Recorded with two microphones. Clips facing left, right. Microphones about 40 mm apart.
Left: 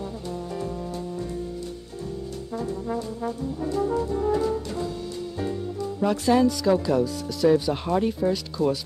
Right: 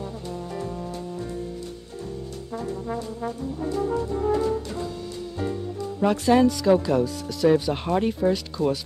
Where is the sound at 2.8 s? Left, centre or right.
Right.